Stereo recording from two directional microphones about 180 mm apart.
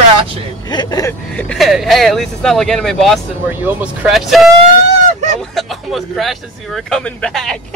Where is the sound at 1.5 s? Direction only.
Centre (ahead or behind).